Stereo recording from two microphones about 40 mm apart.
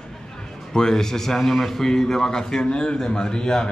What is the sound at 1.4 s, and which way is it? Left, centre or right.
A man's voice, centre.